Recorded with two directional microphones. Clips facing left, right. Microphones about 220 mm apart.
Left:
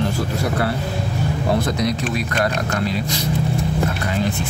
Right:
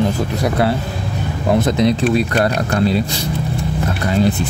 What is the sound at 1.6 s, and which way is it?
Speech, 25° right (ahead or behind).